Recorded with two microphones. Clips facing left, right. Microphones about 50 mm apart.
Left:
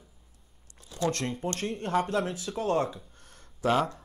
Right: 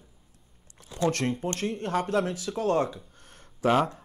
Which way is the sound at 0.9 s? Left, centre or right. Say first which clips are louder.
Right 3 dB; right.